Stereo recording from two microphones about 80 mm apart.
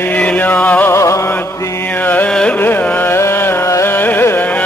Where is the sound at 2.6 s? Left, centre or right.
Left.